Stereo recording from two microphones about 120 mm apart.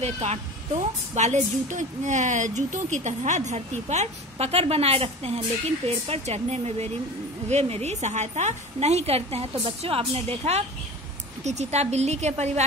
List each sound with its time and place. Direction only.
0.0 s a woman's voice: 70° right (ahead or behind)